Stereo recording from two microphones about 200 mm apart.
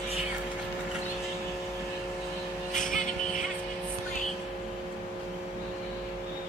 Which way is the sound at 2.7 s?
40° left (ahead or behind).